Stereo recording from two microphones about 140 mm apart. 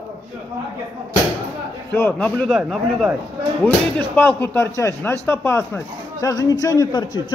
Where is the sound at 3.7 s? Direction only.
10° left (ahead or behind).